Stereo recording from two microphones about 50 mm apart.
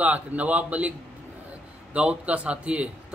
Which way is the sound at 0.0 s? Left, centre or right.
Right.